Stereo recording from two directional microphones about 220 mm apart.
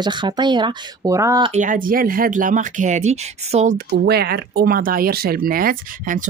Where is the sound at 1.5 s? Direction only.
35° right (ahead or behind).